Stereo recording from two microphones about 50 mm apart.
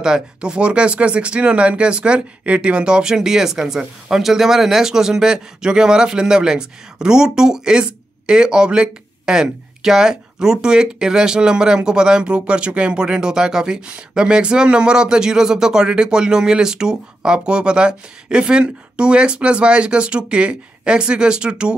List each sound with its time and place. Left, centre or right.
0.0 s speech: centre